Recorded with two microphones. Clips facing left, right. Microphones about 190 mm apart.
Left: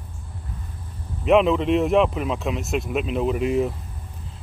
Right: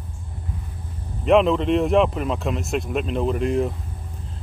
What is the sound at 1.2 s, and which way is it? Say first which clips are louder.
Speech: even; centre (ahead or behind).